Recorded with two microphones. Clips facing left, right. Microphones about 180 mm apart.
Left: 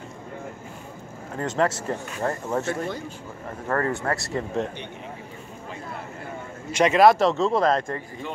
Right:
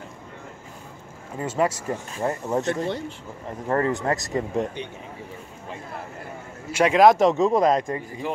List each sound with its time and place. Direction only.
1.3 s speech: 10° right (ahead or behind)
6.7 s speech: 10° right (ahead or behind)